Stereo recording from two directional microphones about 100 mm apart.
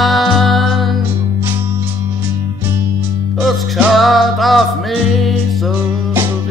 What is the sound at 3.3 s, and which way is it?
Music, centre (ahead or behind).